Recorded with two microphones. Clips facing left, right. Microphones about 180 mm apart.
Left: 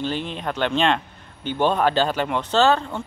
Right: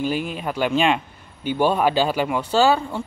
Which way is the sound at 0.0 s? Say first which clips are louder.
Right 2 dB; 10° right (ahead or behind).